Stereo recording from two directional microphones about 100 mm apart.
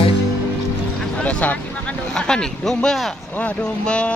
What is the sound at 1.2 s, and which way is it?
Vehicle, 15° left (ahead or behind).